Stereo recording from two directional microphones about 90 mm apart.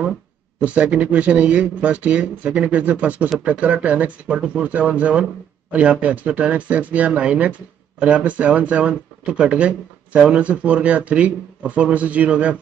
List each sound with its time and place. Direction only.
0.6 s speech: 15° right (ahead or behind)